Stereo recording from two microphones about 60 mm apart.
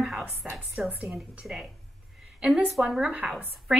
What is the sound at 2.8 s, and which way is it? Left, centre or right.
Speech, centre.